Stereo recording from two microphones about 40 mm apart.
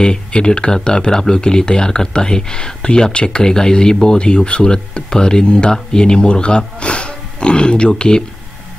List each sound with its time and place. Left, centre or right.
0.0 s speech: left